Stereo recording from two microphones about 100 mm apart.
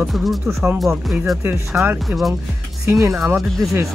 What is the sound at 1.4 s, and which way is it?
Speech, 20° right (ahead or behind).